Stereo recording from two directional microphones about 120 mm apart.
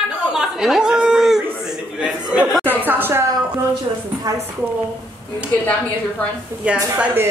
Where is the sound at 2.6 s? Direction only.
15° right (ahead or behind).